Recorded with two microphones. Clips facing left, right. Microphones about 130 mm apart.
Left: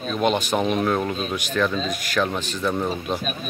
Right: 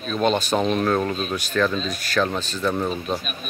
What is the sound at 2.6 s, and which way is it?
Speech, 5° left (ahead or behind).